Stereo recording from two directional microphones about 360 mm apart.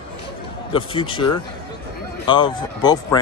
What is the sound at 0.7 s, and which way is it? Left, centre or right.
Speech, centre.